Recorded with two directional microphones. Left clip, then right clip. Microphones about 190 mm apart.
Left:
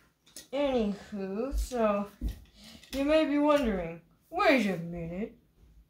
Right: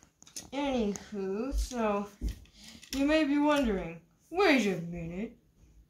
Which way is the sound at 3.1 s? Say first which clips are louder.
Left 3 dB; 15° left (ahead or behind).